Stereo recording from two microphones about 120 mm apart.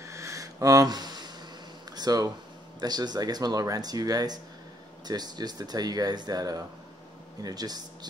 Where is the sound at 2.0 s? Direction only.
30° right (ahead or behind).